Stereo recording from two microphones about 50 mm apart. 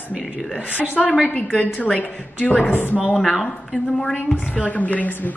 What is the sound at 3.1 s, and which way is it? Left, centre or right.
Speech, centre.